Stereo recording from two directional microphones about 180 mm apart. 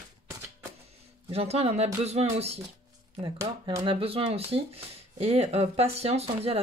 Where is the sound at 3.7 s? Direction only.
25° right (ahead or behind).